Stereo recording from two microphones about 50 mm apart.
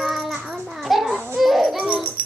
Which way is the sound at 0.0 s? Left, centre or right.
Centre.